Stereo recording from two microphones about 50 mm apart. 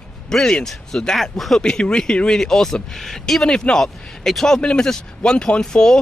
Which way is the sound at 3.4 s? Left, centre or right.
Centre.